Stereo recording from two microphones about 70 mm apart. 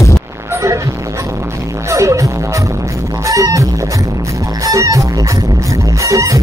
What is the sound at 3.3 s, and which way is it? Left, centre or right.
Music, right.